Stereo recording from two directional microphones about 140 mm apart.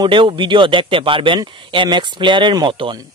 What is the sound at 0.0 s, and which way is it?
Speech, 35° right (ahead or behind).